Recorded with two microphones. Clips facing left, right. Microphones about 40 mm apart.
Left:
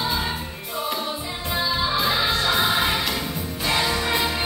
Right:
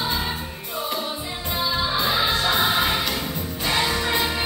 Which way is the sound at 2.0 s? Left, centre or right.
Centre.